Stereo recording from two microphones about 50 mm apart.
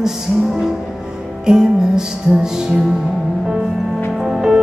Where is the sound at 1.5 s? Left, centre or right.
Centre.